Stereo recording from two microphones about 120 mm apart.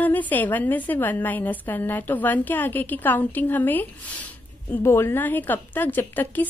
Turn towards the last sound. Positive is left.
turn(degrees=15)  # may be behind; listen again after turning